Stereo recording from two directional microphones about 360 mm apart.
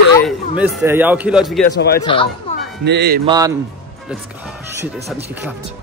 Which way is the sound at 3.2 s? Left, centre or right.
Centre.